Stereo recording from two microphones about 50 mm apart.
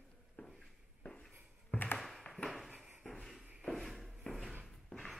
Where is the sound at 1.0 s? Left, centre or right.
Centre.